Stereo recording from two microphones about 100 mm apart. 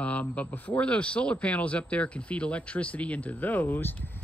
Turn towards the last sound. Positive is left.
turn(degrees=20)  # may be behind; listen again after turning